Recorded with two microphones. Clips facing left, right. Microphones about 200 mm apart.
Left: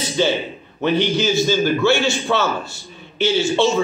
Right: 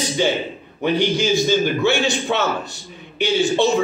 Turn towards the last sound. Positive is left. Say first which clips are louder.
# even
turn(degrees=-15)  # may be behind; listen again after turning